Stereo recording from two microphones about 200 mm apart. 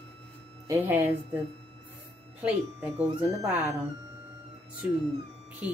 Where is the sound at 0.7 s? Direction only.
10° right (ahead or behind).